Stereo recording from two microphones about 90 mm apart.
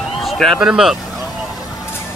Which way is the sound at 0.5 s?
5° right (ahead or behind).